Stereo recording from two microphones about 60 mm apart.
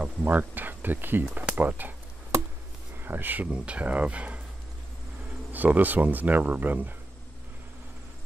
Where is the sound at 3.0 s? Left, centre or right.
Right.